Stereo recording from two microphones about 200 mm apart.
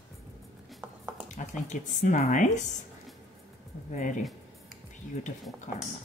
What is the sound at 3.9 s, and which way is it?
Speech, 40° left (ahead or behind).